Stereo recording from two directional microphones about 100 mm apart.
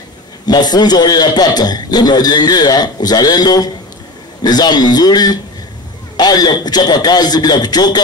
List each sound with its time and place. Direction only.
0.5 s a man's voice: 45° left (ahead or behind)